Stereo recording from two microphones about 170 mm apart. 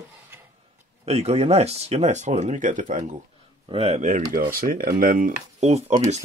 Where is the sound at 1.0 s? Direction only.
40° right (ahead or behind).